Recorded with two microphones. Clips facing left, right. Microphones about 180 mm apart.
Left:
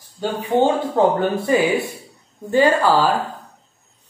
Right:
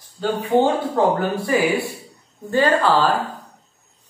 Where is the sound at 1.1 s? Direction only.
25° left (ahead or behind).